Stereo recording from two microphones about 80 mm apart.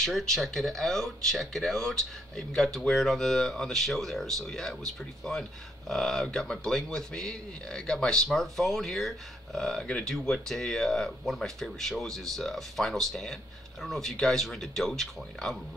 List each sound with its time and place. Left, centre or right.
0.0 s speech: centre